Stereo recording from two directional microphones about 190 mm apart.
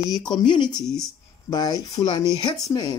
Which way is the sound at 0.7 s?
Centre (ahead or behind).